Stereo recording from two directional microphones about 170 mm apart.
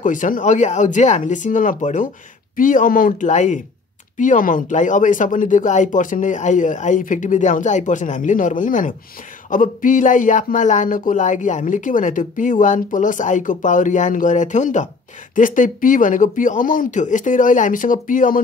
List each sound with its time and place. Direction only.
0.0 s speech: 50° left (ahead or behind)